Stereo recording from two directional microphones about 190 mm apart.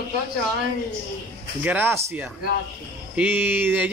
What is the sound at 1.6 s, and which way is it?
A man's voice, 10° right (ahead or behind).